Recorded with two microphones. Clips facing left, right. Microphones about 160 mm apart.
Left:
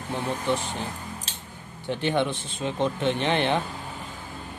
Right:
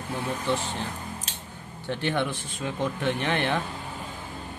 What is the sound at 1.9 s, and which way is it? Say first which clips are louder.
Speech: left 2 dB; 20° left (ahead or behind).